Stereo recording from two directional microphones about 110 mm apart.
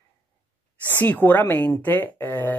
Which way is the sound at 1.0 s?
15° left (ahead or behind).